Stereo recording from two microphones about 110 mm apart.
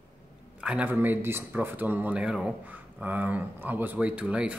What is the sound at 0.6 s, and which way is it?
Speech, 10° right (ahead or behind).